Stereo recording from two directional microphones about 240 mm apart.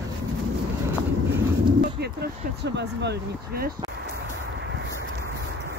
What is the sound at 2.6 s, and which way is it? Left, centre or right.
Speech, right.